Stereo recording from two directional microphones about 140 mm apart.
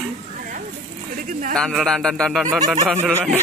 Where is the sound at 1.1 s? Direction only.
70° right (ahead or behind).